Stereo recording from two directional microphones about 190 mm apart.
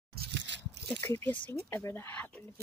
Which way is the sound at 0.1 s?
60° right (ahead or behind).